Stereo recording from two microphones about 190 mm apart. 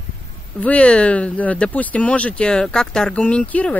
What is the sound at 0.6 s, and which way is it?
Speech, 5° left (ahead or behind).